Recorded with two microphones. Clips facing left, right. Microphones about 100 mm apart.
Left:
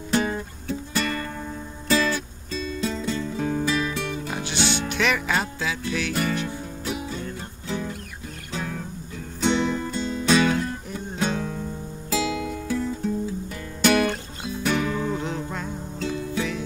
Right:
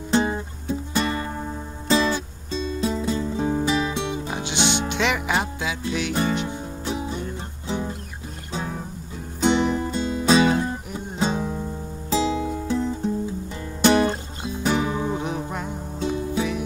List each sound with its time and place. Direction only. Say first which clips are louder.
0.1 s music: right 2 dB; 25° right (ahead or behind)